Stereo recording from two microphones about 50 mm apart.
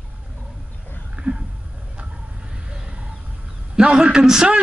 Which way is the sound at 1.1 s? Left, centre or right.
Right.